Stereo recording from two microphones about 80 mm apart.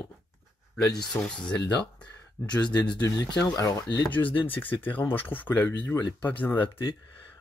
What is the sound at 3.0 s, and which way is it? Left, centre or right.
Speech, left.